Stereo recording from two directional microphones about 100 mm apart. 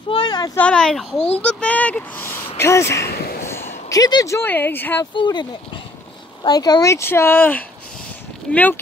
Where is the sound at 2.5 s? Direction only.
25° left (ahead or behind).